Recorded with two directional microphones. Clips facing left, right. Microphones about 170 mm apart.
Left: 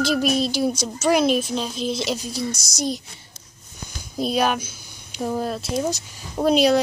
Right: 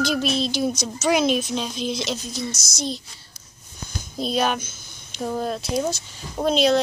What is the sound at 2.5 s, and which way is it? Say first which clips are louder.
Speech: left 3 dB; 35° left (ahead or behind).